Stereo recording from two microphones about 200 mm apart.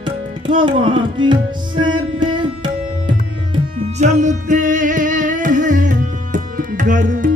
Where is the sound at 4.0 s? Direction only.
35° right (ahead or behind).